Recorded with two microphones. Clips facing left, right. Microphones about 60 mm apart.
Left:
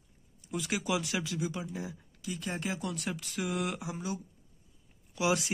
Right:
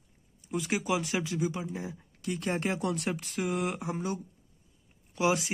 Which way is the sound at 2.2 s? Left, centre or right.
Right.